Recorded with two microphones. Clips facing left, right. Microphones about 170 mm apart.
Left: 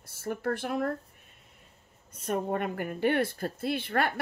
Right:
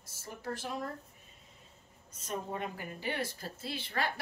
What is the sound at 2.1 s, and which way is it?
Speech, 60° left (ahead or behind).